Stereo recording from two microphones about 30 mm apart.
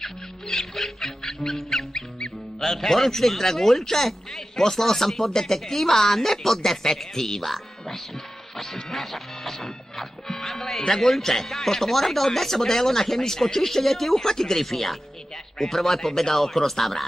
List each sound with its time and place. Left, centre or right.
0.0 s music: centre
2.6 s a man's voice: centre
8.5 s music: centre
10.8 s a man's voice: centre
14.2 s a man's voice: centre